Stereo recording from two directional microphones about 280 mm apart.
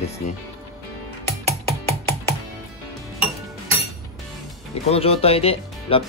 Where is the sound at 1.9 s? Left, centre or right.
Centre.